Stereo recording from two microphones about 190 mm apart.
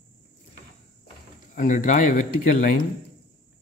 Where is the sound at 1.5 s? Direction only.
45° left (ahead or behind).